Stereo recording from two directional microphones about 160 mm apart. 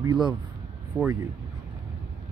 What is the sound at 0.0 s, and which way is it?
Speech, 25° right (ahead or behind).